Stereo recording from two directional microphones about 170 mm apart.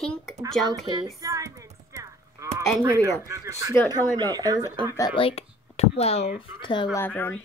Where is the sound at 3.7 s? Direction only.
15° left (ahead or behind).